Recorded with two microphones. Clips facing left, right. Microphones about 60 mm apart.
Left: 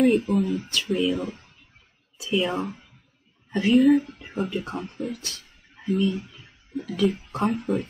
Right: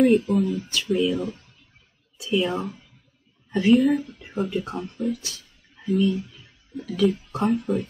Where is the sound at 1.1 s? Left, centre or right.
Left.